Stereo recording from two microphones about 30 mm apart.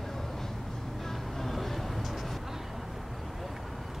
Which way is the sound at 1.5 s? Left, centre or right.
Centre.